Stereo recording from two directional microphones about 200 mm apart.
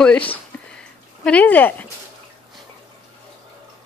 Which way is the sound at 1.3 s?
5° left (ahead or behind).